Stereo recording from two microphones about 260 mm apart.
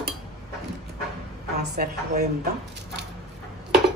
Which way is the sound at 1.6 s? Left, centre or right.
Right.